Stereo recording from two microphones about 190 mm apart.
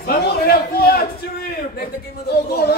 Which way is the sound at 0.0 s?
55° left (ahead or behind).